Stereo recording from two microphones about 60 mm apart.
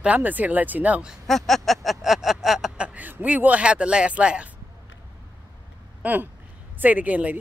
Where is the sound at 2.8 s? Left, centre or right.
Right.